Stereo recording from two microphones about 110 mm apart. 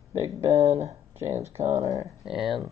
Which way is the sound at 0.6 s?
85° right.